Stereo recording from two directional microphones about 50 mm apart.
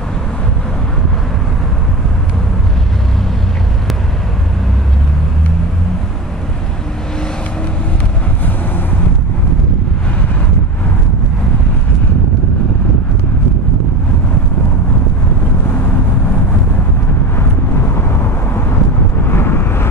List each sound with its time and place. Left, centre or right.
17.9 s vehicle: left